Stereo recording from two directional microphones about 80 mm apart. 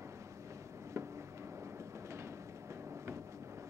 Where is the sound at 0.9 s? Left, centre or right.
Right.